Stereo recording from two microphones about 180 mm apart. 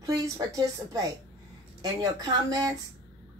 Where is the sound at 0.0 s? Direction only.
20° right (ahead or behind).